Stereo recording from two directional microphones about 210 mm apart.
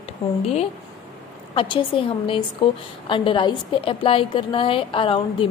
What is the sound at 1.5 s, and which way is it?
A woman's voice, 25° left (ahead or behind).